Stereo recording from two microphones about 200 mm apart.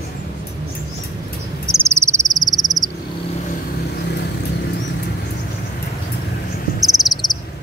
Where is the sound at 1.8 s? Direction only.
15° right (ahead or behind).